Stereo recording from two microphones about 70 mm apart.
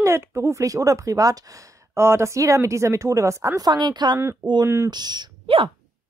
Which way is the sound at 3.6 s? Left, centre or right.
Right.